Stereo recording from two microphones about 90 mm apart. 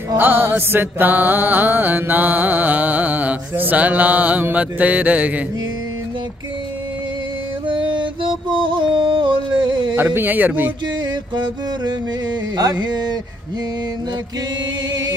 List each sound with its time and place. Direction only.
0.2 s music: 20° right (ahead or behind)
7.6 s music: 65° right (ahead or behind)
9.9 s music: 20° right (ahead or behind)
11.0 s music: 55° right (ahead or behind)
14.9 s music: 50° right (ahead or behind)